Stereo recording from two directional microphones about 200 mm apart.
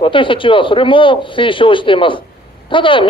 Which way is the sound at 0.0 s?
25° left (ahead or behind).